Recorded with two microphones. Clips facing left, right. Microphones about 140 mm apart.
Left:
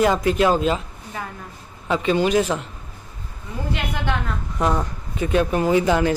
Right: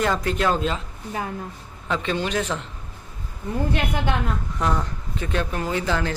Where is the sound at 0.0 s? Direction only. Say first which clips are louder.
Left 5 dB; 10° left (ahead or behind).